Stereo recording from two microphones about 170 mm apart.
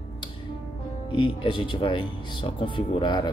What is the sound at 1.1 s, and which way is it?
Speech, 30° left (ahead or behind).